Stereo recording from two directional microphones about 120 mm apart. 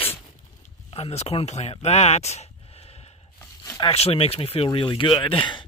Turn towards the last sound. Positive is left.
turn(degrees=40)  # may be behind; listen again after turning